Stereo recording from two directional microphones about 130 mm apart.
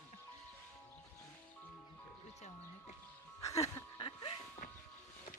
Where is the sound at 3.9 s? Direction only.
40° left (ahead or behind).